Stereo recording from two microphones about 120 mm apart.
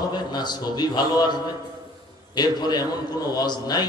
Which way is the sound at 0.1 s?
35° left (ahead or behind).